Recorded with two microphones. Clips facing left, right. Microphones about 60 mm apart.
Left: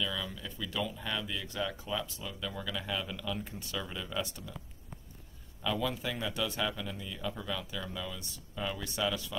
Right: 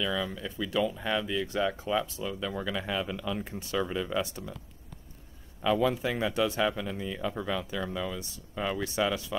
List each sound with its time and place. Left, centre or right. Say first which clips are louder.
0.0 s speech: right 6 dB; right
5.6 s speech: right 7 dB; right